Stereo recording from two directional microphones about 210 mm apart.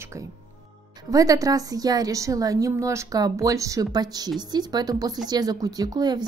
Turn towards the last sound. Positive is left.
turn(degrees=-20)  # may be behind; listen again after turning